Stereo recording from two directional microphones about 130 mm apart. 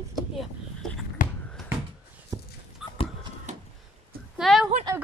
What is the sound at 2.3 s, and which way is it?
Dog, 30° right (ahead or behind).